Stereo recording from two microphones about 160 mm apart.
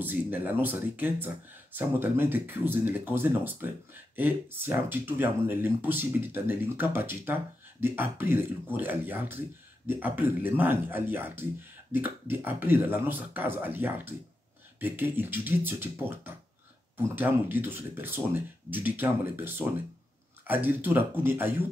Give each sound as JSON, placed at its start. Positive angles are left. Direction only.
{"t": 0.0, "sound": "speech", "side_deg": -10}